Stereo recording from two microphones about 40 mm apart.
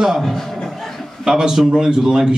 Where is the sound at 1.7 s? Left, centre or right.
Right.